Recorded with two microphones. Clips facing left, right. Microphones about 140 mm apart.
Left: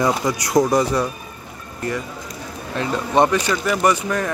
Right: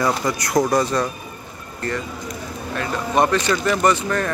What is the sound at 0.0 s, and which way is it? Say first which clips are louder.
Speech: left 1 dB; 15° left (ahead or behind).